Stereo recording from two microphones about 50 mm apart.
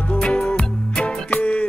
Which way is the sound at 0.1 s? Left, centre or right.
Left.